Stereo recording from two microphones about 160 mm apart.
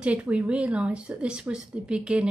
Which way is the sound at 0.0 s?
10° right (ahead or behind).